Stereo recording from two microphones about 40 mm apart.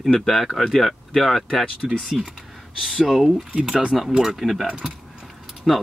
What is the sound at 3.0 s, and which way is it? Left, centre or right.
Speech, centre.